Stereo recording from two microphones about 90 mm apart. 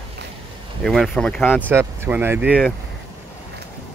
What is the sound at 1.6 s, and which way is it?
Speech, 25° right (ahead or behind).